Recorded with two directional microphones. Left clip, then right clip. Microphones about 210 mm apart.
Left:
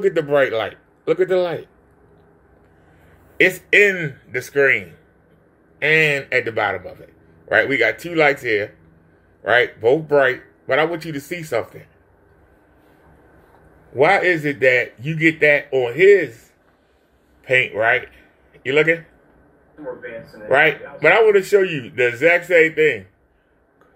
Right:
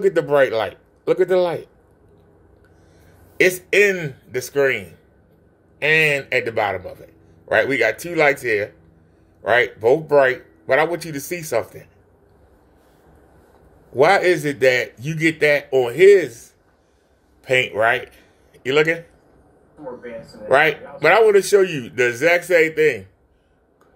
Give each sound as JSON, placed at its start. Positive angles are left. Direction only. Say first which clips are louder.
{"t": 0.0, "sound": "a man's voice", "louder": "right 1 dB", "side_deg": -15}
{"t": 3.3, "sound": "a man's voice", "louder": "left 2 dB", "side_deg": -15}
{"t": 13.9, "sound": "a man's voice", "louder": "even", "side_deg": -15}
{"t": 17.5, "sound": "speech", "louder": "left 1 dB", "side_deg": -15}
{"t": 20.4, "sound": "a man's voice", "louder": "even", "side_deg": -15}